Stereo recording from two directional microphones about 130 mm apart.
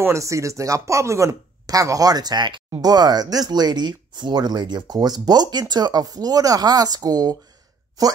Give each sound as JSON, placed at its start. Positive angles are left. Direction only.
{"t": 0.0, "sound": "speech", "side_deg": -25}